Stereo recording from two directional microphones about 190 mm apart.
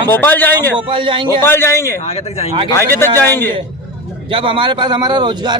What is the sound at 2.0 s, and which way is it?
Speech, 35° left (ahead or behind).